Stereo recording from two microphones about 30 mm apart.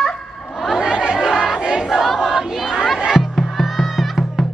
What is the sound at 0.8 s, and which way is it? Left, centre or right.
Chatter, right.